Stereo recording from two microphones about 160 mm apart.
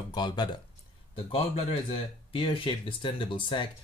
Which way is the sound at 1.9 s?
35° left (ahead or behind).